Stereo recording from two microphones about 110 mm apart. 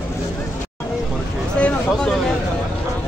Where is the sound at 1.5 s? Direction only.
10° left (ahead or behind).